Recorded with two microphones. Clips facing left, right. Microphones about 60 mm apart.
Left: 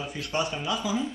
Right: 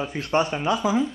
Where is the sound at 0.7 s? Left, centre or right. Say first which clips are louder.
Right 7 dB; right.